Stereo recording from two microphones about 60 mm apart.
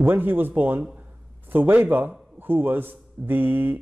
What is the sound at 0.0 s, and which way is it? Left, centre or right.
A man's voice, right.